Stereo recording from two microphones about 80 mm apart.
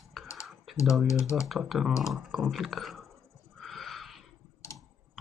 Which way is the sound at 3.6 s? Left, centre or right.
Centre.